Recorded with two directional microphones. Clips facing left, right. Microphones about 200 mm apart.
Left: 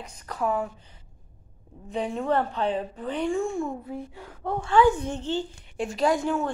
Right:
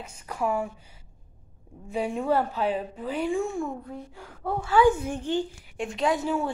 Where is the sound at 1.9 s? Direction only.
10° right (ahead or behind).